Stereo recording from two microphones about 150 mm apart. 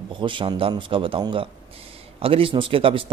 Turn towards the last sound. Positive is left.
turn(degrees=-35)  # may be behind; listen again after turning